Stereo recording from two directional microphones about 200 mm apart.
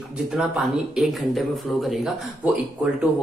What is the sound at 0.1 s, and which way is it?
Speech, centre (ahead or behind).